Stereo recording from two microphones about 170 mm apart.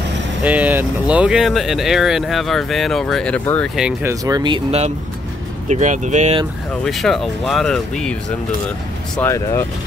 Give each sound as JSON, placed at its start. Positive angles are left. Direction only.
{"t": 0.4, "sound": "speech", "side_deg": -10}
{"t": 3.7, "sound": "speech", "side_deg": -5}
{"t": 4.1, "sound": "speech", "side_deg": -20}
{"t": 6.8, "sound": "speech", "side_deg": 0}